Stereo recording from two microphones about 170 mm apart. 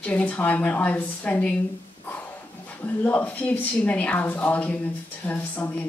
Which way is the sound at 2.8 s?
10° left (ahead or behind).